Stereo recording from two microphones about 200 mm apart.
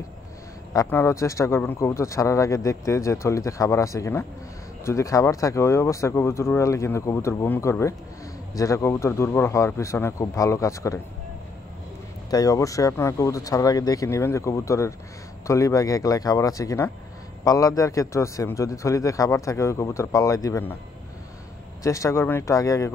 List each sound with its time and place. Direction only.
0.7 s speech: 10° left (ahead or behind)
12.3 s speech: 15° left (ahead or behind)
21.8 s speech: 15° left (ahead or behind)